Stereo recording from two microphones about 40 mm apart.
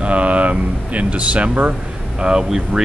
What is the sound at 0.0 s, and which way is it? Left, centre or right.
Speech, right.